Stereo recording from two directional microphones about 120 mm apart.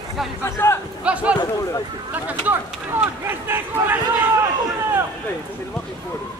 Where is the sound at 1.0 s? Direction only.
10° right (ahead or behind).